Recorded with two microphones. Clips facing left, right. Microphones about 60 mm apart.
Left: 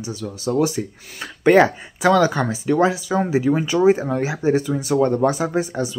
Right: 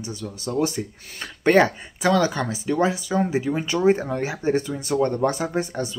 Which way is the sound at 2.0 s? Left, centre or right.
Left.